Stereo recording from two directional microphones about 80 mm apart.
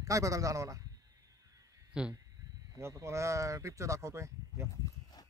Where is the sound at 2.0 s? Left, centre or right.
Centre.